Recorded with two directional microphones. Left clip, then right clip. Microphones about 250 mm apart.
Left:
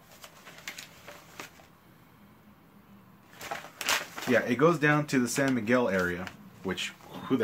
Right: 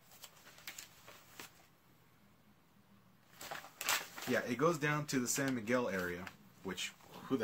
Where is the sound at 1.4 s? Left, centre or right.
Centre.